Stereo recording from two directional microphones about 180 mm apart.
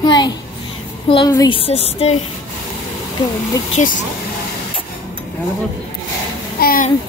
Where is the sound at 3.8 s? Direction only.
40° left (ahead or behind).